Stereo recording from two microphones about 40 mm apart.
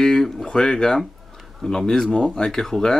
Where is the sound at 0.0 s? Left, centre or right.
Centre.